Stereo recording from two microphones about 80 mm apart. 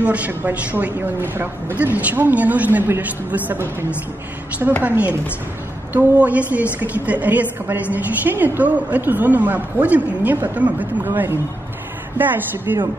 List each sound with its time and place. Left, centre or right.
0.0 s a woman's voice: centre
4.8 s a woman's voice: centre
6.1 s a woman's voice: centre